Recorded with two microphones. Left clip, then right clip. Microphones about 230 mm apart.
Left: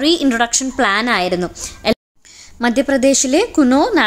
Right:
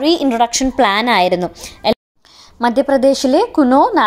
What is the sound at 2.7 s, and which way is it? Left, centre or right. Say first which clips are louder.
A woman's voice: right 2 dB; centre.